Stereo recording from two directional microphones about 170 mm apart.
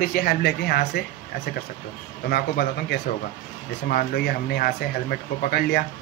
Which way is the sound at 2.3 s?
70° left (ahead or behind).